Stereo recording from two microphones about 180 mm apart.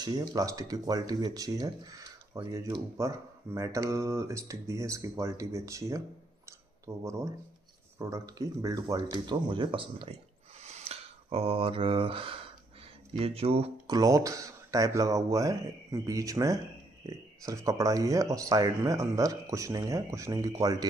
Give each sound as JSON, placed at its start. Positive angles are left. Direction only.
{"t": 0.0, "sound": "speech", "side_deg": -20}
{"t": 10.6, "sound": "a sound", "side_deg": -35}
{"t": 13.2, "sound": "speech", "side_deg": -35}
{"t": 13.8, "sound": "speech", "side_deg": -20}